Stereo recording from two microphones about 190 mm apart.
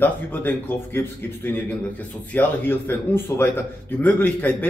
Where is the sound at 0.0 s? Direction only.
10° left (ahead or behind).